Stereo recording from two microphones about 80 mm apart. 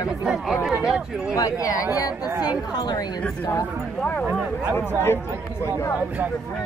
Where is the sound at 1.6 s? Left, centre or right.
Left.